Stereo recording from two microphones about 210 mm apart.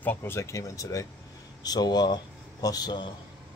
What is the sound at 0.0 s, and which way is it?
Speech, 10° left (ahead or behind).